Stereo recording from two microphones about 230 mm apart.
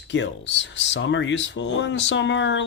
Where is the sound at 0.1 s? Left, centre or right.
Left.